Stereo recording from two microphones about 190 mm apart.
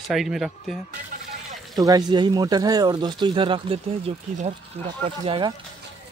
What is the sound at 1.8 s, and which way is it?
Speech, 20° right (ahead or behind).